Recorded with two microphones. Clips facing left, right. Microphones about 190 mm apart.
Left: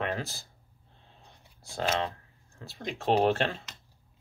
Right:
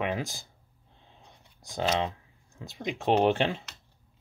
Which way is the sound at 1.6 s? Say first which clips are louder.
Right 2 dB; 15° right (ahead or behind).